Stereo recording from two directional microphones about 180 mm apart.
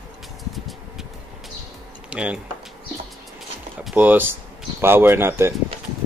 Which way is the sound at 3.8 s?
10° right (ahead or behind).